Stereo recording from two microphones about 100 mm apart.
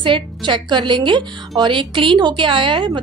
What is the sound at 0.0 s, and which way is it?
A woman's voice, 55° right (ahead or behind).